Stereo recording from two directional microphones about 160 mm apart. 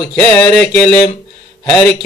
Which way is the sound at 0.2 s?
5° left (ahead or behind).